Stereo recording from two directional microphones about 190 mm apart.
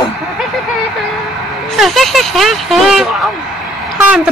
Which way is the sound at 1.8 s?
Centre (ahead or behind).